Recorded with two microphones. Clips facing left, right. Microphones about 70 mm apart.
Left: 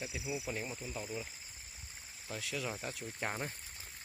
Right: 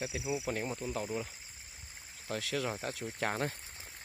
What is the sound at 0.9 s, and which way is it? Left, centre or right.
Cricket, right.